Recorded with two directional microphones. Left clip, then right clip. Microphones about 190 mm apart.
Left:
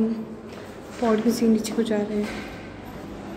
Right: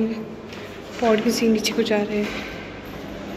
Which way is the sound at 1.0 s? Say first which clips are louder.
Right 3 dB; 15° left (ahead or behind).